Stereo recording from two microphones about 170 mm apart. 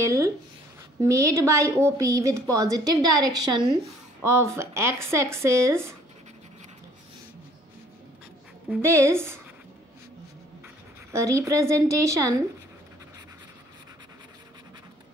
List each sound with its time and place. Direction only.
0.0 s a woman's voice: 20° right (ahead or behind)
8.8 s a woman's voice: 15° right (ahead or behind)
11.1 s a woman's voice: 15° right (ahead or behind)